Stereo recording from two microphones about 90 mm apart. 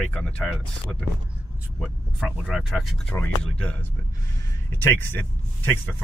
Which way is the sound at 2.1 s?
Centre (ahead or behind).